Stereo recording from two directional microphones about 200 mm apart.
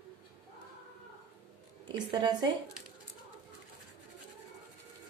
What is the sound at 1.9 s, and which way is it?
Speech, 20° right (ahead or behind).